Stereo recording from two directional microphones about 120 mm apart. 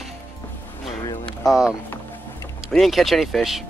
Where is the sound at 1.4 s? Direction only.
5° right (ahead or behind).